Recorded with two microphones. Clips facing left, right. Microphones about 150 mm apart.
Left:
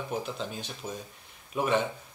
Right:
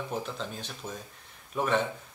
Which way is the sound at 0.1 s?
5° left (ahead or behind).